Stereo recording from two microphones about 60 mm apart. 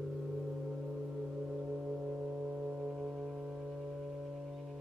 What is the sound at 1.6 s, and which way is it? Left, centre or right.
Foghorn, centre.